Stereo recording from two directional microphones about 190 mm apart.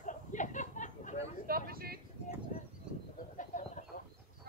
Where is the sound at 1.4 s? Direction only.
50° right (ahead or behind).